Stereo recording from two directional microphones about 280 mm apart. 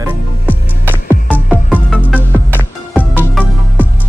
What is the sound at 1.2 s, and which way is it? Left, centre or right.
Music, centre.